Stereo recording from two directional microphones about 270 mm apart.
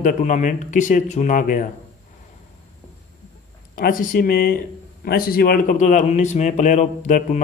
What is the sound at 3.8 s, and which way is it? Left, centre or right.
Speech, left.